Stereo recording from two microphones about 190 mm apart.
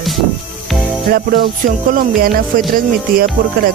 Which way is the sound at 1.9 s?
50° right (ahead or behind).